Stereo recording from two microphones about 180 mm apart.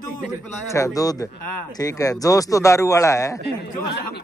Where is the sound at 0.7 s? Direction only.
15° left (ahead or behind).